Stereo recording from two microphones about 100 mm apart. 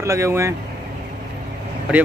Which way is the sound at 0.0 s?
30° right (ahead or behind).